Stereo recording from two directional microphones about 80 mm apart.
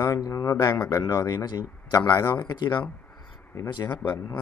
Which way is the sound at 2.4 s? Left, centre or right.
Left.